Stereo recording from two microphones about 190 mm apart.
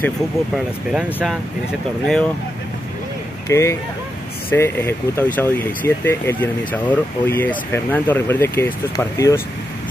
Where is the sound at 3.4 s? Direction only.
15° left (ahead or behind).